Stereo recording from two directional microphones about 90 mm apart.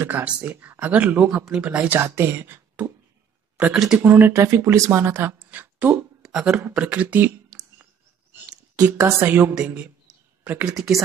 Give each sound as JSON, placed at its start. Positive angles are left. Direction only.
{"t": 0.0, "sound": "speech", "side_deg": -20}
{"t": 2.0, "sound": "speech", "side_deg": -30}
{"t": 6.2, "sound": "speech", "side_deg": -10}
{"t": 8.9, "sound": "speech", "side_deg": -25}
{"t": 10.0, "sound": "a sound", "side_deg": -15}